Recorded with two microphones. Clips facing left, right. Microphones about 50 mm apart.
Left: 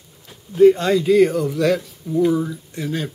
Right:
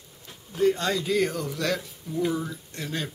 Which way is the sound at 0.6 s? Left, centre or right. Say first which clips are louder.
Left 11 dB; left.